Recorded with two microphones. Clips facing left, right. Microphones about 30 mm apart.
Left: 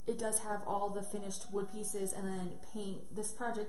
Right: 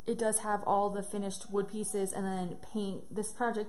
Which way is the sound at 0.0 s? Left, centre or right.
Right.